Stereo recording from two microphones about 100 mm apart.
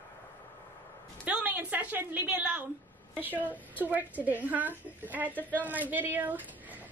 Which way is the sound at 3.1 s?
15° right (ahead or behind).